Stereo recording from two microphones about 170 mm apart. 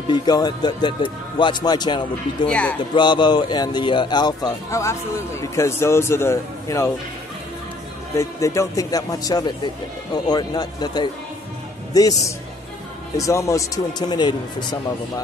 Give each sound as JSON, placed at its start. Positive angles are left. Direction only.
{"t": 0.1, "sound": "a man's voice", "side_deg": 25}
{"t": 2.4, "sound": "speech", "side_deg": 10}
{"t": 2.9, "sound": "a man's voice", "side_deg": 25}
{"t": 8.2, "sound": "a man's voice", "side_deg": 20}